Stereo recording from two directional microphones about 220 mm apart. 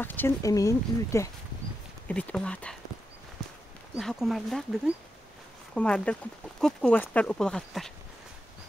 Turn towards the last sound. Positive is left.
turn(degrees=0)  # may be behind; listen again after turning